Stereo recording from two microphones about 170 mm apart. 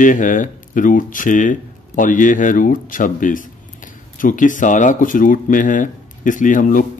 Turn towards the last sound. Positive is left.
turn(degrees=50)  # may be behind; listen again after turning